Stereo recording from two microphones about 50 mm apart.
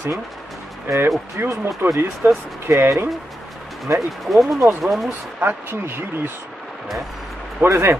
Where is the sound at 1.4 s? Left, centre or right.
Right.